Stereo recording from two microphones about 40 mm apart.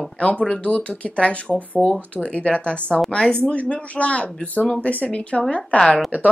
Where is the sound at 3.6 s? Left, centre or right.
Left.